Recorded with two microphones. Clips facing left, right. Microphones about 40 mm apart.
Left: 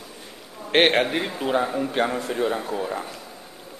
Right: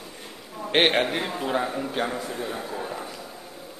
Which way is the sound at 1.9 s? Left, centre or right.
Left.